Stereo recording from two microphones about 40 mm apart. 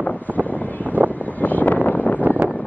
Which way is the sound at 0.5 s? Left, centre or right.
Left.